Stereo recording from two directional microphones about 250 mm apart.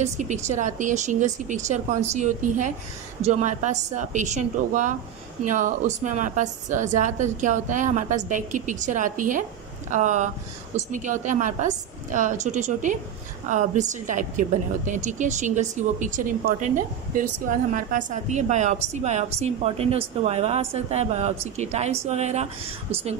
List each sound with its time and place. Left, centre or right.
0.0 s speech: right